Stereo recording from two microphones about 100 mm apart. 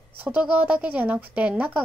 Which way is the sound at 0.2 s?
15° right (ahead or behind).